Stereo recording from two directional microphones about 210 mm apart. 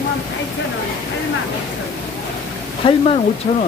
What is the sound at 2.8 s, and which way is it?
Speech, 25° left (ahead or behind).